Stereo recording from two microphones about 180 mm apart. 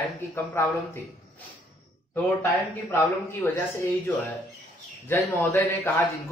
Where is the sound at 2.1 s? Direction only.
15° left (ahead or behind).